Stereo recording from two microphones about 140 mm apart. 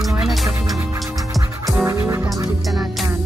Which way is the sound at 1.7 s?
20° right (ahead or behind).